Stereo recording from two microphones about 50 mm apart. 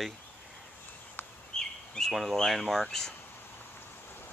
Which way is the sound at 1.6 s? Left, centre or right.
Centre.